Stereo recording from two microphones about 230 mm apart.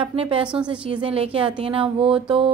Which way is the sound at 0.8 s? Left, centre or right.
Right.